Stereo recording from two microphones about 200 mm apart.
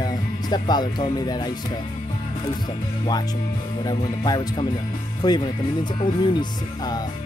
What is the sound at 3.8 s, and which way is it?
Speech, 20° left (ahead or behind).